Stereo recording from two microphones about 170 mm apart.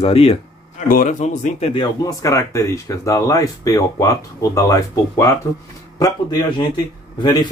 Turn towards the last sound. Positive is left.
turn(degrees=25)  # may be behind; listen again after turning